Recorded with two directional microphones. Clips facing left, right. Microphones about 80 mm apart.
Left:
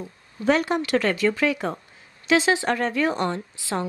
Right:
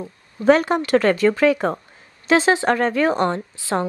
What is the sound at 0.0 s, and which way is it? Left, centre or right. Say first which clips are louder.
A woman's voice: right 7 dB; right.